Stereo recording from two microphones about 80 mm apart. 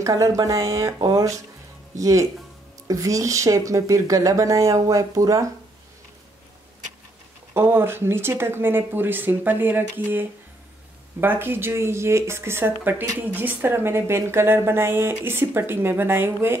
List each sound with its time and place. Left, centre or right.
0.0 s speech: right
7.5 s a woman's voice: right